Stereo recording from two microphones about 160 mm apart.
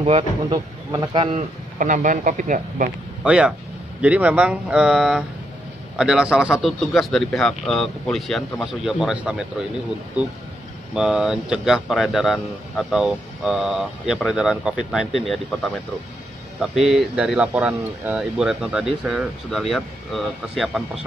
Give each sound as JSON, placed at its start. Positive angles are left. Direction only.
{"t": 0.0, "sound": "a man's voice", "side_deg": -30}
{"t": 1.3, "sound": "speech", "side_deg": -55}
{"t": 3.3, "sound": "speech", "side_deg": -5}
{"t": 11.0, "sound": "speech", "side_deg": -5}